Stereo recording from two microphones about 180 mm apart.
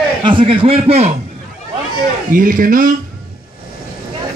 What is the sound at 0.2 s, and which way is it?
Speech, 25° right (ahead or behind).